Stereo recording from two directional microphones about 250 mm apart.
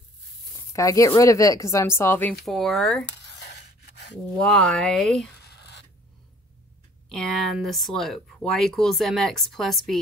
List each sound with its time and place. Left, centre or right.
0.7 s speech: centre
3.3 s a sound: left
4.4 s speech: centre
7.1 s speech: centre